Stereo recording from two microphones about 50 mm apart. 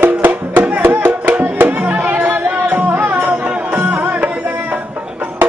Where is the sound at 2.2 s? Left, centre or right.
Right.